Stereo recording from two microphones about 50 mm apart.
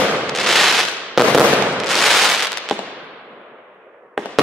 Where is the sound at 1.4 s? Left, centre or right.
Right.